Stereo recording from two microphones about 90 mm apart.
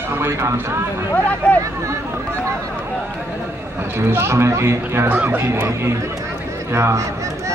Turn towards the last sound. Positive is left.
turn(degrees=-30)  # may be behind; listen again after turning